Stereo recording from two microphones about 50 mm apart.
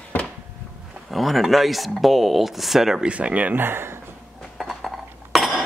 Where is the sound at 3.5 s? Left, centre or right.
Right.